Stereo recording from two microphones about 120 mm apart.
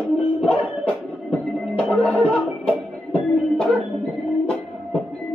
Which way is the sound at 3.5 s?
5° left (ahead or behind).